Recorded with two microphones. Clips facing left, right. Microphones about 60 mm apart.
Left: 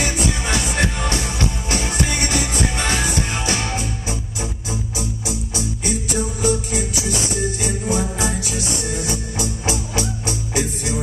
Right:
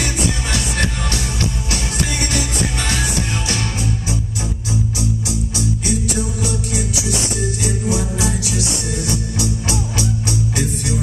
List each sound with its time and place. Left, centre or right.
0.0 s music: centre
4.9 s music: centre